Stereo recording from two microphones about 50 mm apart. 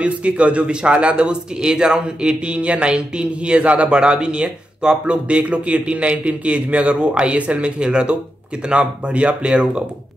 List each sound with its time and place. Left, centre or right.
0.0 s a man's voice: right